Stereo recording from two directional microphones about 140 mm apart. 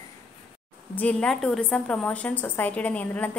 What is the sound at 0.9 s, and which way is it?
A woman's voice, 10° left (ahead or behind).